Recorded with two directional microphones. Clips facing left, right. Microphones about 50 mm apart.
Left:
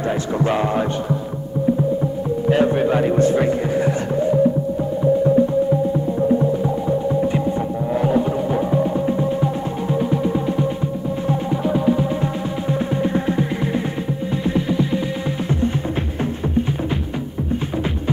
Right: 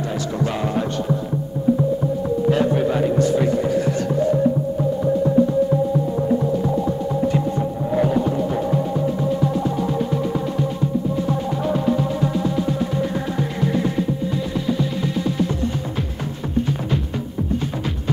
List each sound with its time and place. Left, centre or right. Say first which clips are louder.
0.0 s a man's voice: left 3 dB; left
2.5 s a man's voice: left 5 dB; left